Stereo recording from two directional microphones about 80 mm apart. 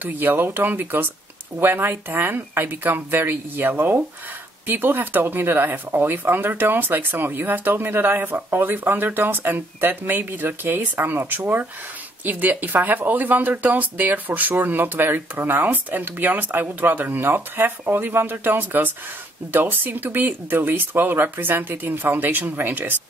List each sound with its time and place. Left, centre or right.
0.0 s speech: right